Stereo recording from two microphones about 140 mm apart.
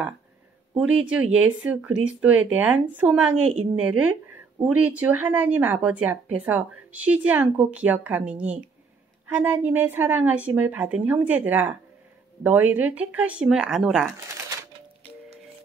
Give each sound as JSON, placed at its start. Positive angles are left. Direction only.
{"t": 0.7, "sound": "a woman's voice", "side_deg": -5}
{"t": 14.1, "sound": "shuffling cards", "side_deg": -20}